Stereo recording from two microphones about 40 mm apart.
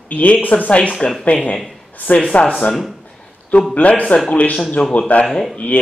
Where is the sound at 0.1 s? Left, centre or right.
Left.